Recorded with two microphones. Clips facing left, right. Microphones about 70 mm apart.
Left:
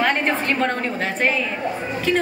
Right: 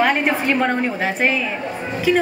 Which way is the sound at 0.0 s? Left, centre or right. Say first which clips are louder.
Right 3 dB; centre.